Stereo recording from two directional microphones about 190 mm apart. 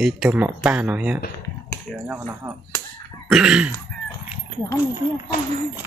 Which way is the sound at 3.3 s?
5° right (ahead or behind).